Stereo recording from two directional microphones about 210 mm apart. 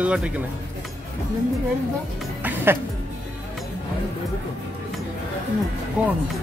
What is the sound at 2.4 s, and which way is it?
Music, 10° right (ahead or behind).